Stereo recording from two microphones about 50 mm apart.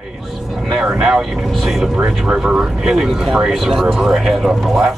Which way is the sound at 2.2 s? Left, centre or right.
Centre.